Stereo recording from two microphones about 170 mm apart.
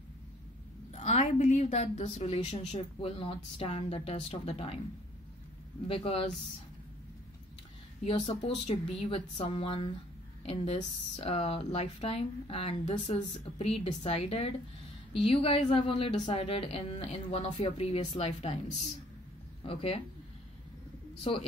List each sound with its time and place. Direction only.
0.9 s a woman's voice: 40° left (ahead or behind)
5.9 s a woman's voice: 35° left (ahead or behind)
8.0 s a woman's voice: 35° left (ahead or behind)
21.2 s a woman's voice: 30° left (ahead or behind)